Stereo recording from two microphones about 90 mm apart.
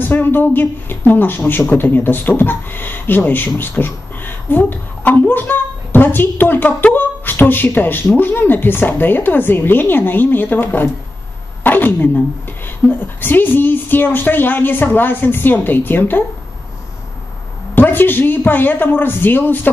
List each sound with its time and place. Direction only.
0.0 s a woman's voice: 20° left (ahead or behind)
17.7 s speech: 20° left (ahead or behind)